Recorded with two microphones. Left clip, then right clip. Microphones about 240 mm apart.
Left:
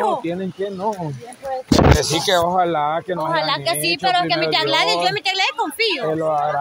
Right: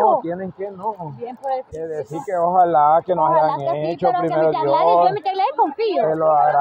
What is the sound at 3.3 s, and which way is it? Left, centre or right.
Speech, centre.